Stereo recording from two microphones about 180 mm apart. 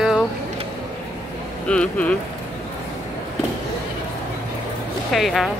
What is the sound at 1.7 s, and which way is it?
Speech, 5° left (ahead or behind).